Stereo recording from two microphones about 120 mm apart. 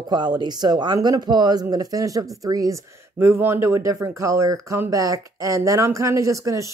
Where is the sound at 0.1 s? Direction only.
35° right (ahead or behind).